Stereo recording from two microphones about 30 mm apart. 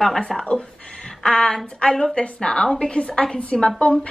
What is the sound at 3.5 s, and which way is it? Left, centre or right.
Speech, centre.